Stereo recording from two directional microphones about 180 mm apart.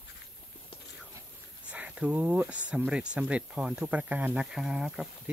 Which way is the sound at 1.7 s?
5° right (ahead or behind).